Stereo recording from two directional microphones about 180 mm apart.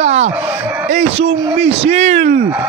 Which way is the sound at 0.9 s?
35° right (ahead or behind).